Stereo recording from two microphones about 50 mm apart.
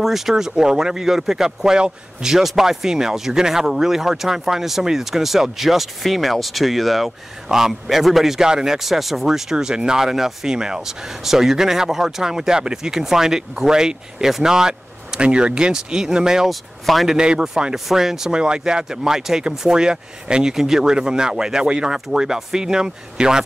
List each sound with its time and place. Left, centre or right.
0.0 s speech: centre
16.4 s speech: centre
17.1 s speech: centre